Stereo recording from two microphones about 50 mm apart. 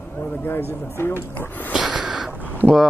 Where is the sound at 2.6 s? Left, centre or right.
Right.